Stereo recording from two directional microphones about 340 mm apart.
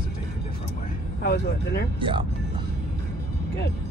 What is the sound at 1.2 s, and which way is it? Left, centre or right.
Speech, left.